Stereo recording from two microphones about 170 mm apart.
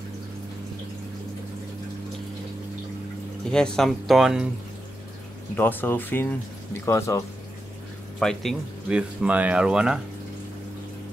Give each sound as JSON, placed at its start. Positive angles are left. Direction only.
{"t": 3.5, "sound": "speech", "side_deg": 5}
{"t": 5.6, "sound": "speech", "side_deg": 10}
{"t": 8.2, "sound": "speech", "side_deg": 5}